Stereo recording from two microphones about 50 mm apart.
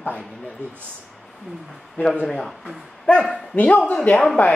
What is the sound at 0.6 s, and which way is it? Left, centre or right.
Speech, right.